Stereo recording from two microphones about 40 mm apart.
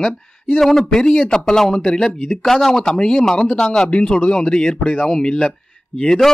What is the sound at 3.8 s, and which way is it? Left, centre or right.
Speech, left.